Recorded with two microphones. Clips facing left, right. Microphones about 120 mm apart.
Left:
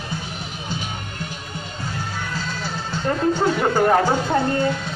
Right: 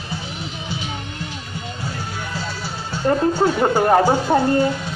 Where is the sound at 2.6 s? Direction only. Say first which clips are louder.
Right 4 dB; 10° right (ahead or behind).